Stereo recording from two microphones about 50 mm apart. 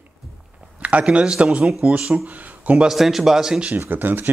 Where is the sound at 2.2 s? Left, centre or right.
Right.